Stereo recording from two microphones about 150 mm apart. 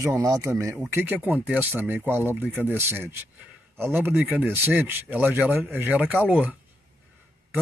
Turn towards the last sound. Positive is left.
turn(degrees=-10)  # may be behind; listen again after turning